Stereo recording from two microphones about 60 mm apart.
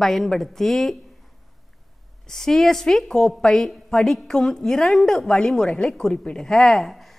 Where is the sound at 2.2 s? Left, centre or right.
Centre.